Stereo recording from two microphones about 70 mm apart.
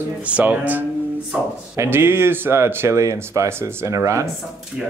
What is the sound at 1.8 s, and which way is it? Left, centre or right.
Speech, right.